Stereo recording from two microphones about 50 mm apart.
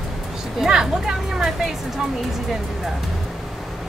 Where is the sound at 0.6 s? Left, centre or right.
Centre.